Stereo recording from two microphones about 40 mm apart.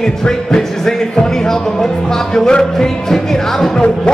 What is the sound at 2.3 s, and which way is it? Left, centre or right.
Music, centre.